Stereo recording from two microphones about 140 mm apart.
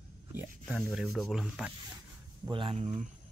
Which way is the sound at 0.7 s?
Centre (ahead or behind).